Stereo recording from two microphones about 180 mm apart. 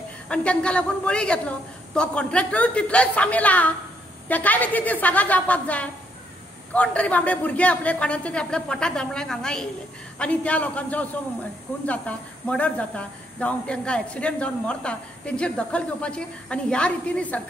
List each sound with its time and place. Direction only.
0.3 s a woman's voice: 5° left (ahead or behind)